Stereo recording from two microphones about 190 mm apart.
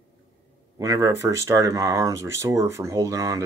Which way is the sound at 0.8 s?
15° right (ahead or behind).